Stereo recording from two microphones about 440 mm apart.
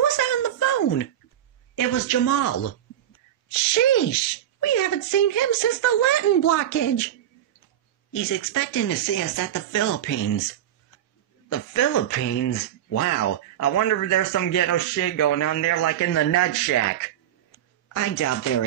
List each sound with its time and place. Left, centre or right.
0.2 s a sound: left
1.8 s speech: left
8.1 s speech: left
11.4 s speech: left